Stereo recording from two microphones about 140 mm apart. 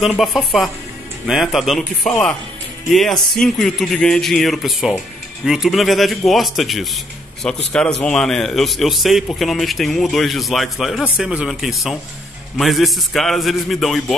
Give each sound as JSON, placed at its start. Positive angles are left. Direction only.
{"t": 0.0, "sound": "a man's voice", "side_deg": 0}